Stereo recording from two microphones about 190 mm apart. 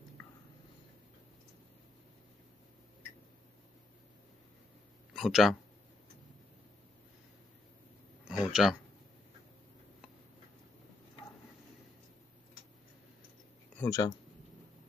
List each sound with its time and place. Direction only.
5.1 s speech: centre (ahead or behind)
8.3 s a sound: 5° right (ahead or behind)
13.7 s speech: 20° left (ahead or behind)